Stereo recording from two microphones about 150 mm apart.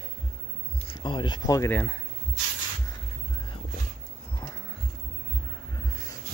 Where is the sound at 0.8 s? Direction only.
30° left (ahead or behind).